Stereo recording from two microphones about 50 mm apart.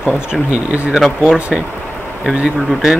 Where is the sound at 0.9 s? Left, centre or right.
Centre.